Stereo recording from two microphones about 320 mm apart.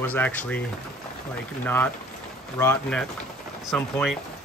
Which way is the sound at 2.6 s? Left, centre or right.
Centre.